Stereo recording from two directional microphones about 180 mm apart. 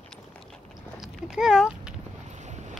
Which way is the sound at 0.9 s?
5° right (ahead or behind).